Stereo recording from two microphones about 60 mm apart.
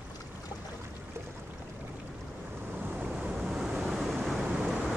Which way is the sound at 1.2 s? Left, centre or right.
Right.